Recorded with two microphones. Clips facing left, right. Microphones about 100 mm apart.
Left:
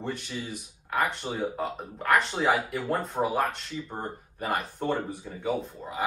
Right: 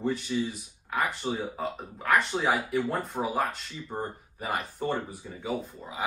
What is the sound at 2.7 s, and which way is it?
Speech, centre (ahead or behind).